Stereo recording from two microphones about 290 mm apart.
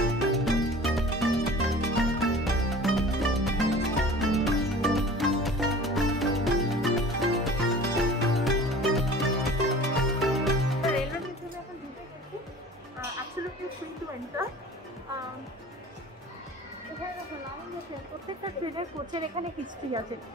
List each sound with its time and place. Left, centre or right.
0.1 s music: centre
19.1 s a woman's voice: centre